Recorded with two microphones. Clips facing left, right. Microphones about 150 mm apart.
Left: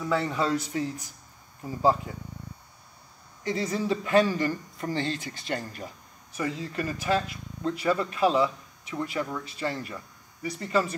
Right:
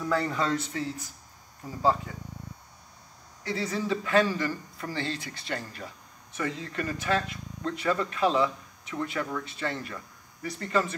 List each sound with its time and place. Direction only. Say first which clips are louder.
0.0 s speech: left 1 dB; 5° left (ahead or behind)
3.4 s speech: left 2 dB; 15° left (ahead or behind)